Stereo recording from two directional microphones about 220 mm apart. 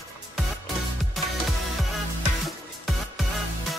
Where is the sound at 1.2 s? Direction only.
Centre (ahead or behind).